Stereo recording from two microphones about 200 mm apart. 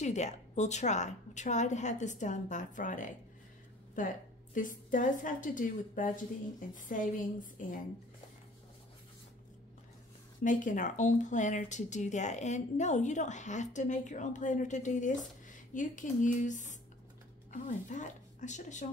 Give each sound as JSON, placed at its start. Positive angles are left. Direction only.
{"t": 0.0, "sound": "speech", "side_deg": 35}
{"t": 10.4, "sound": "speech", "side_deg": 40}